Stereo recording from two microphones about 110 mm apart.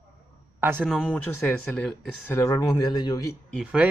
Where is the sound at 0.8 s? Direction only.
5° left (ahead or behind).